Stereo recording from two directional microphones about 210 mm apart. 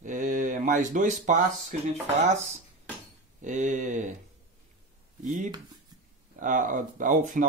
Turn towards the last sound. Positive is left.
turn(degrees=-40)  # may be behind; listen again after turning